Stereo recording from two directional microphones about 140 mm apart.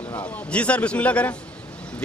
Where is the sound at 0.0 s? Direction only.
10° left (ahead or behind).